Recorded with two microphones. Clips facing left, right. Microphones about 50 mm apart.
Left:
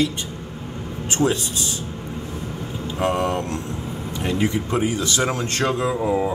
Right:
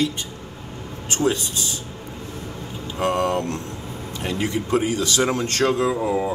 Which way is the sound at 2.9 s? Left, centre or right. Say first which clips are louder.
Right 1 dB; centre.